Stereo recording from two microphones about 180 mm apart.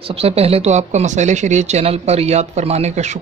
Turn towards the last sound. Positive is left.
turn(degrees=-40)  # may be behind; listen again after turning